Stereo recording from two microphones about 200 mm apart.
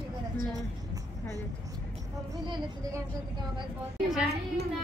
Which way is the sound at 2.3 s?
15° right (ahead or behind).